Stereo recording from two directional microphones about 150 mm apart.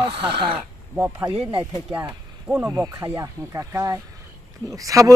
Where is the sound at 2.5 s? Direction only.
20° right (ahead or behind).